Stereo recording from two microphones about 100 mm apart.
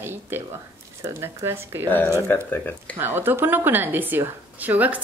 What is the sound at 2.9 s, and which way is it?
A woman's voice, 20° right (ahead or behind).